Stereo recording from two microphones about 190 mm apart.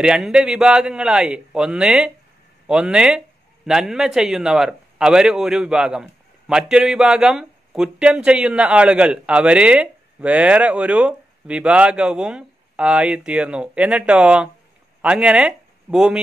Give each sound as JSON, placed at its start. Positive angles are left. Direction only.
{"t": 0.0, "sound": "a man's voice", "side_deg": -5}